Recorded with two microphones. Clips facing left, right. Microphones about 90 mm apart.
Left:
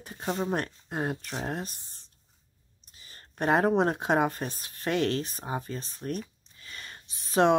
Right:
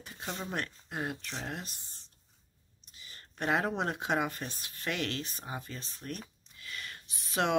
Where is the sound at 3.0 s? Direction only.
40° left (ahead or behind).